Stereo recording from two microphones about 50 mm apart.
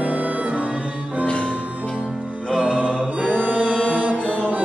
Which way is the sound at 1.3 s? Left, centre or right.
Left.